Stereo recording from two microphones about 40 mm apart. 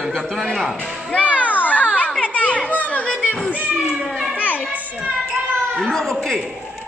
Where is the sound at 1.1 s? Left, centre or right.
Left.